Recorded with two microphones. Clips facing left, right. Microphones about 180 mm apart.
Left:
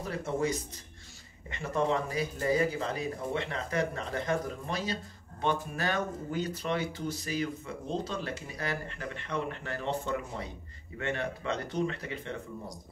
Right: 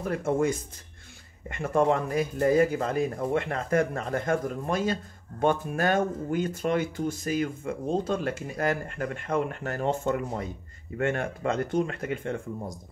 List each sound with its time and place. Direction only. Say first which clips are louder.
0.0 s speech: right 6 dB; 50° right (ahead or behind)